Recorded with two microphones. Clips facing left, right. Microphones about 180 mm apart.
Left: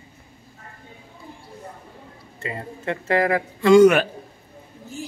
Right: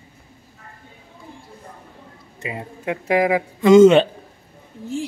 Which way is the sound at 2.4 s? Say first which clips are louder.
Right 1 dB; 10° right (ahead or behind).